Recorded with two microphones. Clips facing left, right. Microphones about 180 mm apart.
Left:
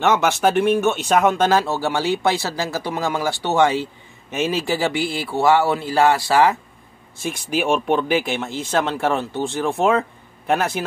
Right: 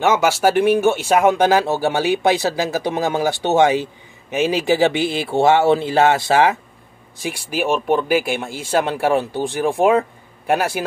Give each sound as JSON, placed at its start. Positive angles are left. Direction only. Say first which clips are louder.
{"t": 0.0, "sound": "speech", "louder": "right 2 dB", "side_deg": -10}